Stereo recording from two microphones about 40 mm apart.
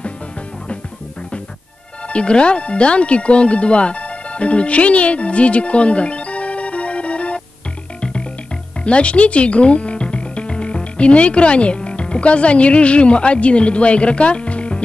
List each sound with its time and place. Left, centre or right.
2.0 s speech: left
8.0 s music: left
8.8 s speech: left